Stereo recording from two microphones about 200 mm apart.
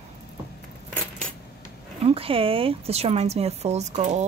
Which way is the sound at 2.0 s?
30° right (ahead or behind).